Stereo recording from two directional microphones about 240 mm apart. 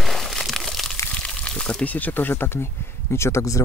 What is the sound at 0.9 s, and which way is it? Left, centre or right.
Speech, centre.